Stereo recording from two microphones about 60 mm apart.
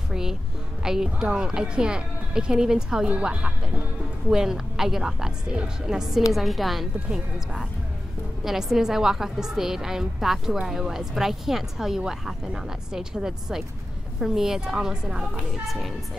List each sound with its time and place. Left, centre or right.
0.1 s a woman's voice: centre
15.6 s a woman's voice: centre